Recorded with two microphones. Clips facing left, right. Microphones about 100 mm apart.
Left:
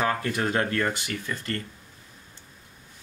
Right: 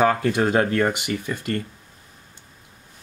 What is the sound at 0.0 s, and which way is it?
Speech, 20° right (ahead or behind).